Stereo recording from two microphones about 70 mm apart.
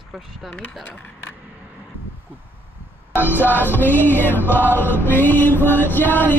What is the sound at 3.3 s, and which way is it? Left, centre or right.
Music, left.